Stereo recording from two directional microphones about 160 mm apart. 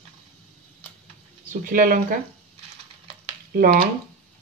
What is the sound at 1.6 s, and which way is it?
Speech, 60° right (ahead or behind).